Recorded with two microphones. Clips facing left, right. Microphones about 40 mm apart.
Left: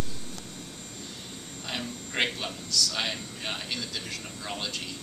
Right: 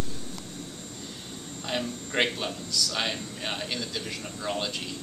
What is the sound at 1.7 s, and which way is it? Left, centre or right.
A man's voice, centre.